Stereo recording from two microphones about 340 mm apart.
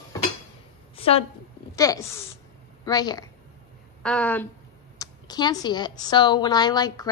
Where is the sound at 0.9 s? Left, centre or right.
Centre.